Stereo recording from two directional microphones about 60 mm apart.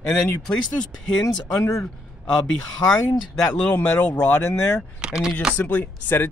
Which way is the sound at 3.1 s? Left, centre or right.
Left.